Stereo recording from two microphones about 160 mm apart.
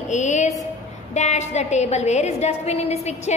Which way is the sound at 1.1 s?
45° left (ahead or behind).